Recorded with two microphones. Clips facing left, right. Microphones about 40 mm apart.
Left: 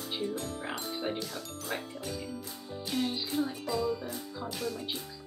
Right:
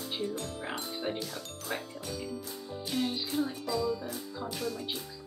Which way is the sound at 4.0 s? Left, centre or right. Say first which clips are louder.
Even; centre.